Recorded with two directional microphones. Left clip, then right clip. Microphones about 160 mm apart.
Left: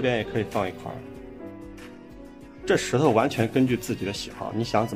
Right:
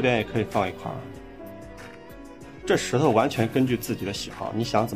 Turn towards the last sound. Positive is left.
turn(degrees=0)  # may be behind; listen again after turning